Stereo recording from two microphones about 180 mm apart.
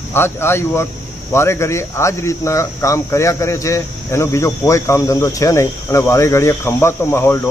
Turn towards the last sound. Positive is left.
turn(degrees=15)  # may be behind; listen again after turning